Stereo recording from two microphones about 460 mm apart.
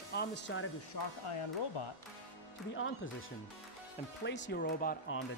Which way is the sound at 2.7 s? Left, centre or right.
Left.